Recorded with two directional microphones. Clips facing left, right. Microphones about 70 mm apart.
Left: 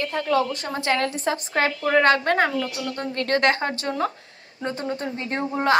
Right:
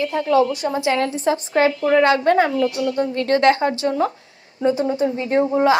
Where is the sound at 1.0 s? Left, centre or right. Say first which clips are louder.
Right 5 dB; left.